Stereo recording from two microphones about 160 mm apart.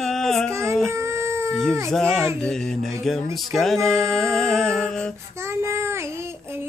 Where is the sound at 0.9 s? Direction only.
15° right (ahead or behind).